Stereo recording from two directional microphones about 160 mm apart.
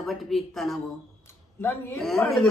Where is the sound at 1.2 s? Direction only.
15° left (ahead or behind).